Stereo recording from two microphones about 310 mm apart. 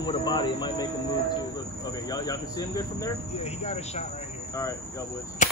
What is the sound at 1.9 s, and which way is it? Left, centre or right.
Speech, centre.